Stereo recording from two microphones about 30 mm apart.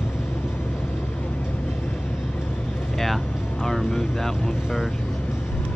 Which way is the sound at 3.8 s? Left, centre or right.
Centre.